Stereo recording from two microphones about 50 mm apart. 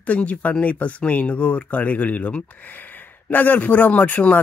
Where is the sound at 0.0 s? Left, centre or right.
Left.